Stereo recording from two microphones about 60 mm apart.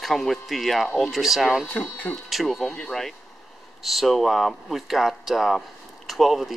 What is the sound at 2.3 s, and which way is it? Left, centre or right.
Speech, centre.